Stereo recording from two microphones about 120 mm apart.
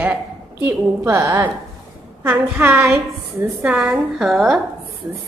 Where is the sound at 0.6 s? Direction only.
20° right (ahead or behind).